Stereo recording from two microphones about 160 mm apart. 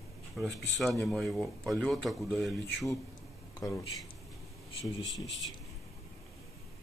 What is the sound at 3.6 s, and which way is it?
Speech, 20° left (ahead or behind).